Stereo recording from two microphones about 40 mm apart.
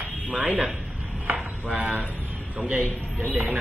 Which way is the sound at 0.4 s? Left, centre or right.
Right.